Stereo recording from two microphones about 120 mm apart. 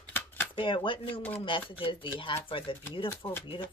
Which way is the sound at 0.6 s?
45° left (ahead or behind).